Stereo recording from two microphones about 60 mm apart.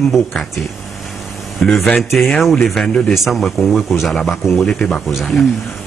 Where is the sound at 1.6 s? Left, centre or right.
Centre.